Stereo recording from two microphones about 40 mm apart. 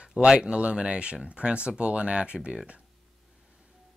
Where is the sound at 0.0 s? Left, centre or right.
Right.